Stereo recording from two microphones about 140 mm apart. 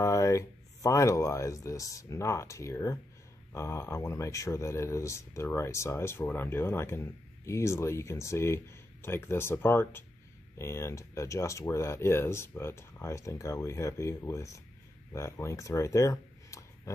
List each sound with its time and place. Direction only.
0.0 s speech: 20° left (ahead or behind)